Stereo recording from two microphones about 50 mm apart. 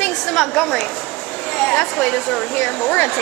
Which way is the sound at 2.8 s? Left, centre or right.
Left.